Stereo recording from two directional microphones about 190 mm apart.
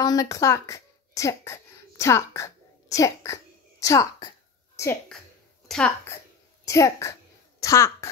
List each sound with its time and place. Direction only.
0.0 s a child's voice: 20° left (ahead or behind)
5.7 s a woman's voice: centre (ahead or behind)
6.6 s a child's voice: 15° left (ahead or behind)